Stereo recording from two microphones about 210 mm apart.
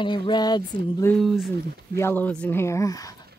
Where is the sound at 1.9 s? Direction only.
10° left (ahead or behind).